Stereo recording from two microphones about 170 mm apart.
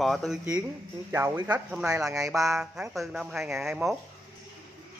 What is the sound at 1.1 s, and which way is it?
A man's voice, 15° right (ahead or behind).